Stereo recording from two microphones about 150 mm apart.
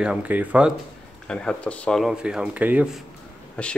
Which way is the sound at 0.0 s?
10° right (ahead or behind).